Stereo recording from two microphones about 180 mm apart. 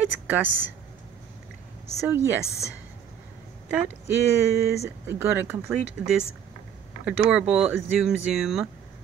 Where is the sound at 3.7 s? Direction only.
10° right (ahead or behind).